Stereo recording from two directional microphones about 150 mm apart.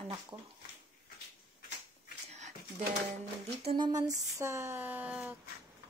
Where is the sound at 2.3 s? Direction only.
50° right (ahead or behind).